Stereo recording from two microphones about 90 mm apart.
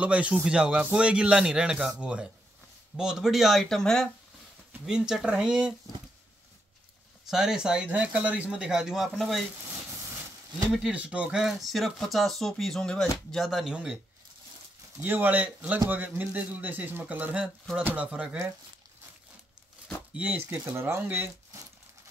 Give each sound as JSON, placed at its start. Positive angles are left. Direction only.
{"t": 0.0, "sound": "speech", "side_deg": -15}
{"t": 4.8, "sound": "speech", "side_deg": -10}
{"t": 7.2, "sound": "speech", "side_deg": -5}
{"t": 10.7, "sound": "speech", "side_deg": -10}
{"t": 15.0, "sound": "speech", "side_deg": -25}
{"t": 20.2, "sound": "speech", "side_deg": -15}